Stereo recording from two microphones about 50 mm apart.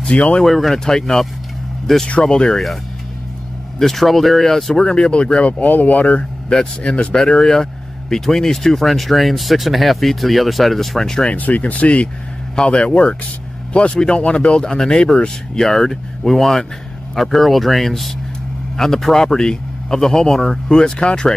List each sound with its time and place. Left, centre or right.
0.0 s speech: left
0.5 s speech: centre
2.0 s speech: left
2.3 s speech: centre
3.8 s speech: centre
4.8 s speech: centre
7.2 s speech: centre
11.3 s speech: left